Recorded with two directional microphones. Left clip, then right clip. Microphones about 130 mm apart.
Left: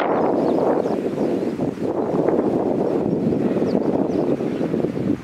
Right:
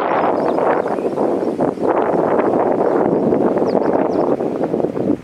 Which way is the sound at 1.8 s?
35° right (ahead or behind).